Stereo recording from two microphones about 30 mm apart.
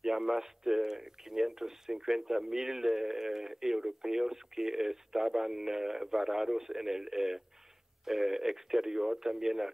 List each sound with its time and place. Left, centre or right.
0.0 s speech: centre